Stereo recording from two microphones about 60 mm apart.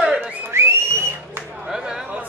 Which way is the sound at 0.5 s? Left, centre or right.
Right.